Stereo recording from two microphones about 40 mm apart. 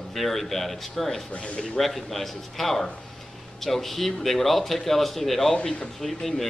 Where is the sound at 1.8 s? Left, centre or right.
Centre.